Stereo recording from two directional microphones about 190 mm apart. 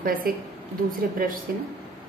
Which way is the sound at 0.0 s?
50° right (ahead or behind).